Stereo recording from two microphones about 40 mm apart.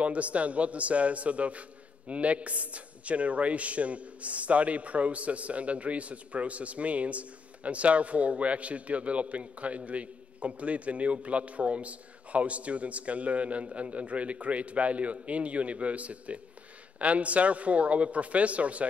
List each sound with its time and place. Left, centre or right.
0.0 s a man's voice: right